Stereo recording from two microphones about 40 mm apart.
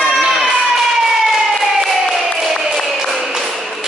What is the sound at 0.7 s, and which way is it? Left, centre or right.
Siren, centre.